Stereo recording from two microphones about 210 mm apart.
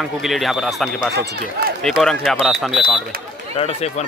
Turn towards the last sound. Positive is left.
turn(degrees=30)  # may be behind; listen again after turning